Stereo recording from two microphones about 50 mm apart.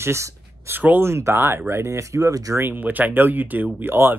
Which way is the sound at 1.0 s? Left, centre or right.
Right.